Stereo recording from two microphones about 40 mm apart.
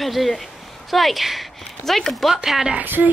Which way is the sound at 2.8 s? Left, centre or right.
Right.